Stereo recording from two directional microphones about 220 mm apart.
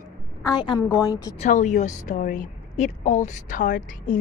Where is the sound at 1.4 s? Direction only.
35° left (ahead or behind).